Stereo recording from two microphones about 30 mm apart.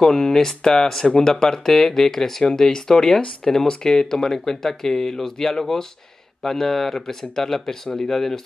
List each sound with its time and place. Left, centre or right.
0.0 s speech: centre